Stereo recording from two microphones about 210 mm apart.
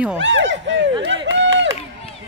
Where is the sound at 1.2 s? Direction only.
60° right (ahead or behind).